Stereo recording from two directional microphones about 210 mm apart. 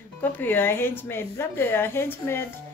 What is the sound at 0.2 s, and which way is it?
Speech, 10° left (ahead or behind).